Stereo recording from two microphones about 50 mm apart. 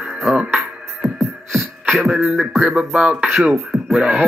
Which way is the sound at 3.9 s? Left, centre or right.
Centre.